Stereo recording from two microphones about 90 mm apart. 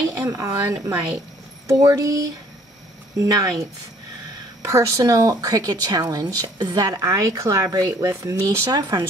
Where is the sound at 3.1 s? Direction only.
40° right (ahead or behind).